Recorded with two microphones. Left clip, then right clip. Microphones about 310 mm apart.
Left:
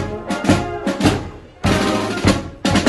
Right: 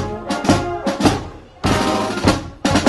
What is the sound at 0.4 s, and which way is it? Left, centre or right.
Music, right.